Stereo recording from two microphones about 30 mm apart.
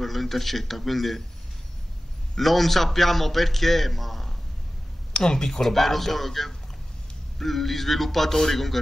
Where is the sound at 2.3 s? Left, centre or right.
Centre.